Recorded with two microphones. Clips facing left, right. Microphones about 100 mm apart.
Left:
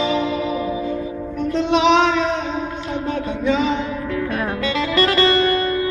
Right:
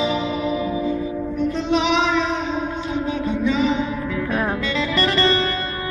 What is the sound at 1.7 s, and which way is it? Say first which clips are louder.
Music: left 5 dB; 70° left (ahead or behind).